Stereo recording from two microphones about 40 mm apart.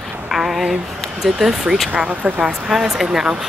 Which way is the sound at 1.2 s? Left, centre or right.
Centre.